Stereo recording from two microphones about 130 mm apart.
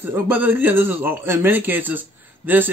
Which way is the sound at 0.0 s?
15° right (ahead or behind).